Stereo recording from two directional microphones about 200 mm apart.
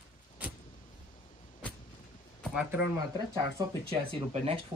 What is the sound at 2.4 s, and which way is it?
Speech, 5° right (ahead or behind).